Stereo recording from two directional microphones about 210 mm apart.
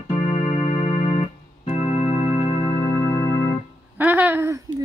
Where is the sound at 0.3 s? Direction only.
35° left (ahead or behind).